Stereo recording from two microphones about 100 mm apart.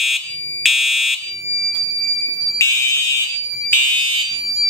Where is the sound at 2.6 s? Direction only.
30° left (ahead or behind).